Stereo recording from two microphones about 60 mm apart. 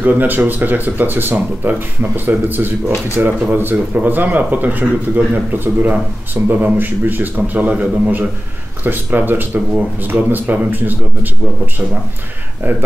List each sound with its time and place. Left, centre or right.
0.0 s speech: right